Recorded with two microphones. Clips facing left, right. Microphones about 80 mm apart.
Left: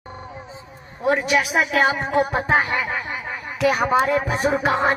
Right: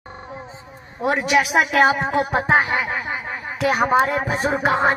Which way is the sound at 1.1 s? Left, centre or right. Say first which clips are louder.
Right 1 dB; right.